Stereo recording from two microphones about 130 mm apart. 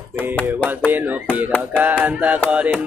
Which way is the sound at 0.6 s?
15° right (ahead or behind).